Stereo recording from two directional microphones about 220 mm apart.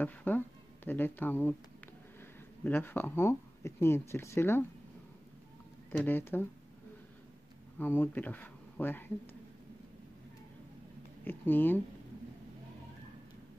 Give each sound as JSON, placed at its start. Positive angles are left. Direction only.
{"t": 0.0, "sound": "a sound", "side_deg": 10}
{"t": 0.8, "sound": "speech", "side_deg": 10}
{"t": 2.6, "sound": "speech", "side_deg": 10}
{"t": 5.9, "sound": "speech", "side_deg": 10}
{"t": 7.8, "sound": "speech", "side_deg": 10}
{"t": 11.2, "sound": "speech", "side_deg": 10}